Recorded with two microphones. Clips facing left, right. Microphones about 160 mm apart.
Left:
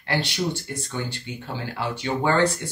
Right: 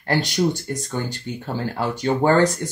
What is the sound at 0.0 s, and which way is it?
Speech, 45° right (ahead or behind).